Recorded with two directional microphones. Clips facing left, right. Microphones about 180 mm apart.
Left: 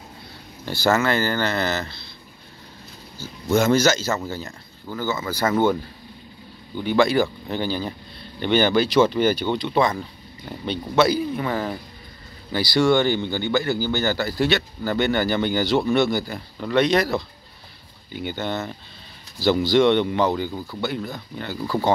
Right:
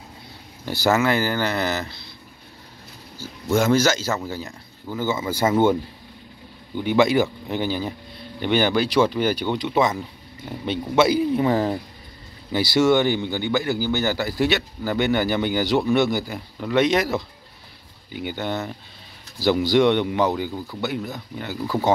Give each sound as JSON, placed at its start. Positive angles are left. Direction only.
{"t": 0.7, "sound": "speech", "side_deg": -15}
{"t": 3.2, "sound": "speech", "side_deg": -5}
{"t": 6.8, "sound": "speech", "side_deg": -15}
{"t": 12.5, "sound": "speech", "side_deg": -20}
{"t": 18.1, "sound": "speech", "side_deg": -10}